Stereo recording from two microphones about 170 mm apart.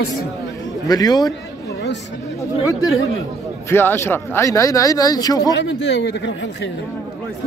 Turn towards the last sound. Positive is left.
turn(degrees=90)